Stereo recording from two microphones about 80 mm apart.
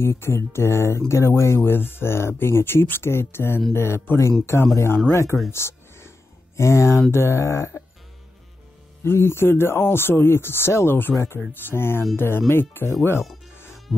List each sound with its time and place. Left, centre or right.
0.0 s speech: left
5.5 s a sound: left
7.1 s speech: left
9.0 s speech: left